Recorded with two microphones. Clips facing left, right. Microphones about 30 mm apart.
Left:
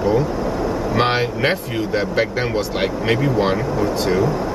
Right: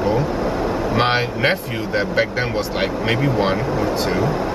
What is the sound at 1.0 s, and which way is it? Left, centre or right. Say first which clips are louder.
Speech: left 1 dB; centre.